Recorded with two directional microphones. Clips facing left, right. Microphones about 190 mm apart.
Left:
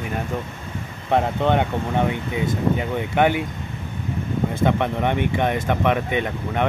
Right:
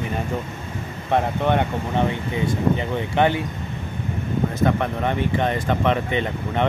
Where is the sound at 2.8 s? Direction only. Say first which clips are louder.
Even; 10° left (ahead or behind).